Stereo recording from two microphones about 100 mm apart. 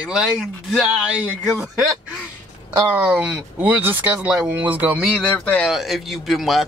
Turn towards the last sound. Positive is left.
turn(degrees=0)  # may be behind; listen again after turning